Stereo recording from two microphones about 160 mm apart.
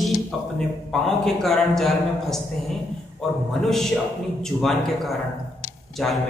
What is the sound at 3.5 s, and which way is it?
A man's voice, centre (ahead or behind).